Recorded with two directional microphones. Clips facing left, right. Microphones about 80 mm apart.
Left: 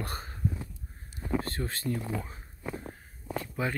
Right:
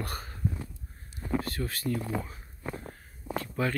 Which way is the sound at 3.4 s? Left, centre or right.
Centre.